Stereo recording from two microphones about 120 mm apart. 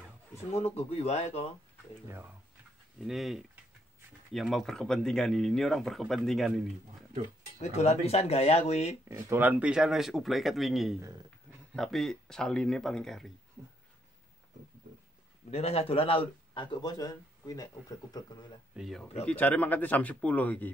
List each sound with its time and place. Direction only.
0.7 s speech: 60° left (ahead or behind)
2.0 s speech: 20° right (ahead or behind)
3.0 s speech: centre (ahead or behind)
7.6 s speech: 65° left (ahead or behind)
9.1 s speech: 20° right (ahead or behind); by 13.3 s 5° left (ahead or behind)
15.5 s speech: 55° left (ahead or behind)
16.8 s speech: 30° left (ahead or behind)
18.8 s speech: centre (ahead or behind)
19.2 s speech: 15° left (ahead or behind)